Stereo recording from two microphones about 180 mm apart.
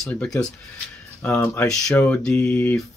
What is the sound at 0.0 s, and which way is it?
Speech, 5° left (ahead or behind).